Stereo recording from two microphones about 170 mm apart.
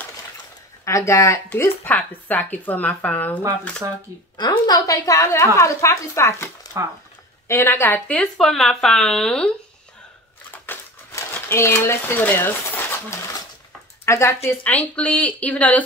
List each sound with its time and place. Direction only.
0.8 s a woman's voice: 15° left (ahead or behind)
4.4 s a woman's voice: 25° left (ahead or behind); by 9.5 s 5° left (ahead or behind)
10.5 s a sound: 15° left (ahead or behind)
14.0 s a woman's voice: 15° left (ahead or behind)